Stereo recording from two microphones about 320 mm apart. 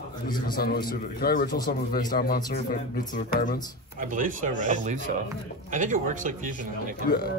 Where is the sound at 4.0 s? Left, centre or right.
Right.